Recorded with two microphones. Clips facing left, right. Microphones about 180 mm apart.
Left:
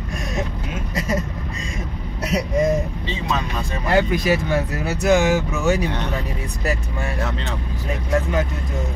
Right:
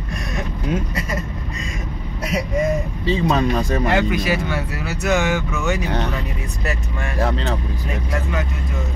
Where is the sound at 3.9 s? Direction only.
40° left (ahead or behind).